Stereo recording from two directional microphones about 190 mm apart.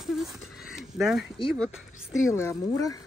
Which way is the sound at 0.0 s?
Centre (ahead or behind).